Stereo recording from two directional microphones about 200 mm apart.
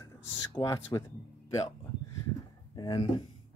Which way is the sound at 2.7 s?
20° left (ahead or behind).